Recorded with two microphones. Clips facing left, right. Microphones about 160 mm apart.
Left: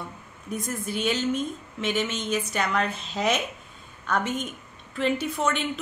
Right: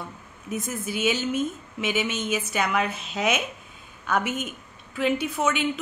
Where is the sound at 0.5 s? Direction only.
Centre (ahead or behind).